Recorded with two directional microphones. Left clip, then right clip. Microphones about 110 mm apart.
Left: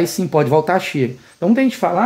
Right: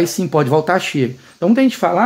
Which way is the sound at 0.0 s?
5° right (ahead or behind).